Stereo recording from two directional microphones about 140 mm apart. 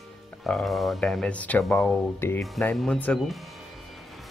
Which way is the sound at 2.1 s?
15° left (ahead or behind).